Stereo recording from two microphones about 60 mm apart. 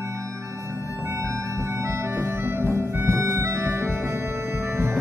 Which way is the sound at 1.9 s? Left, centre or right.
Right.